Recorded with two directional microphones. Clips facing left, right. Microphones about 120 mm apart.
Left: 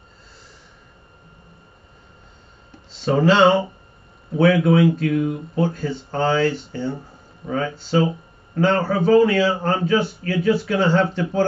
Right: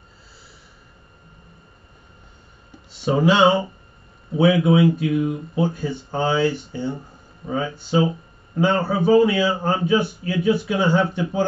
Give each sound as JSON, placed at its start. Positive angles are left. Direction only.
{"t": 2.9, "sound": "a man's voice", "side_deg": -10}